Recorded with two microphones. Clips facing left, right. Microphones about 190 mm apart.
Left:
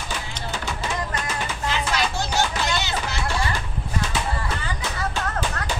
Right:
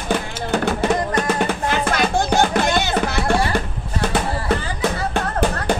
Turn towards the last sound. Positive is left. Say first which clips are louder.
# right 7 dB
turn(degrees=-55)  # may be behind; listen again after turning